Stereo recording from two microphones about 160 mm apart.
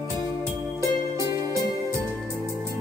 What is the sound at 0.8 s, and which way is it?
Music, 20° right (ahead or behind).